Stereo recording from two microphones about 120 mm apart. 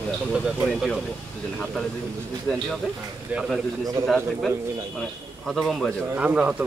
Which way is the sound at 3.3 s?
5° right (ahead or behind).